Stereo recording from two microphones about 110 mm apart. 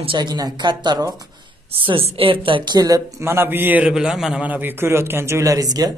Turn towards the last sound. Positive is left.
turn(degrees=-35)  # may be behind; listen again after turning